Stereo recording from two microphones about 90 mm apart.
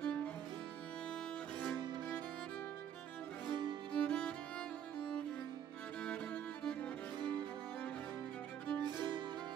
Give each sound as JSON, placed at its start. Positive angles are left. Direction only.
{"t": 0.0, "sound": "music", "side_deg": 15}
{"t": 3.4, "sound": "music", "side_deg": -55}
{"t": 3.9, "sound": "music", "side_deg": 10}
{"t": 6.0, "sound": "music", "side_deg": 10}
{"t": 7.2, "sound": "music", "side_deg": -55}